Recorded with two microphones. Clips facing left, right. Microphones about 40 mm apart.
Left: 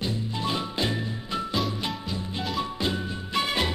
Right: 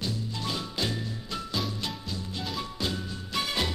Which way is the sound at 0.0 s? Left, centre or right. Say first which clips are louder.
Left 4 dB; left.